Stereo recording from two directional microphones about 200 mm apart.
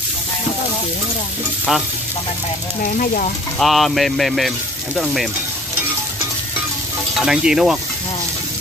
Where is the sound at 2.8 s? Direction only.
45° left (ahead or behind).